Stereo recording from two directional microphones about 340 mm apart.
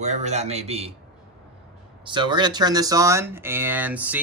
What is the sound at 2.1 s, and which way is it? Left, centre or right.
Speech, centre.